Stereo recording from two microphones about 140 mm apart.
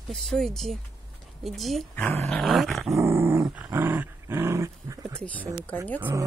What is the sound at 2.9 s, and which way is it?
Dog, 20° right (ahead or behind).